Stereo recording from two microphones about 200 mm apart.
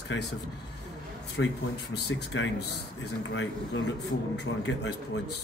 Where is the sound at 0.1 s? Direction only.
65° left (ahead or behind).